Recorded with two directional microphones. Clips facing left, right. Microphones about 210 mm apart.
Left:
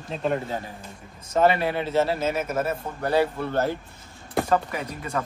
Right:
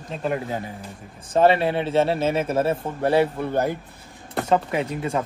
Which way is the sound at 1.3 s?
25° right (ahead or behind).